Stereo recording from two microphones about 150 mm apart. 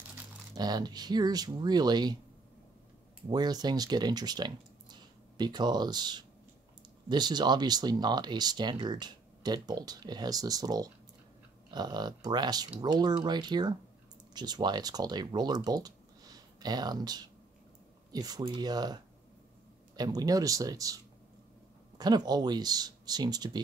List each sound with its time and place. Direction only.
0.6 s speech: 25° right (ahead or behind)
3.3 s speech: 25° right (ahead or behind)
20.0 s speech: 25° right (ahead or behind)